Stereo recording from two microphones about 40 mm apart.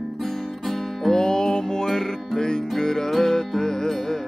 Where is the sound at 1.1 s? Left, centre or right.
Centre.